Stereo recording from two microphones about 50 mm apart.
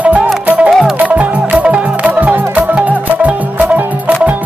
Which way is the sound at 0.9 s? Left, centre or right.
Right.